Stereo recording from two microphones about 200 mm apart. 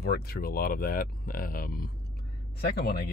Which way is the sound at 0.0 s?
50° left (ahead or behind).